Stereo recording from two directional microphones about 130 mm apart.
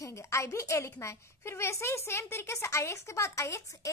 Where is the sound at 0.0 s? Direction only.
25° left (ahead or behind).